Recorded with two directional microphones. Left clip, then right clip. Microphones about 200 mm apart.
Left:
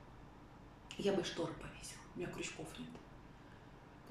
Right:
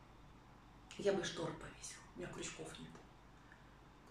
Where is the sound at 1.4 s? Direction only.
5° left (ahead or behind).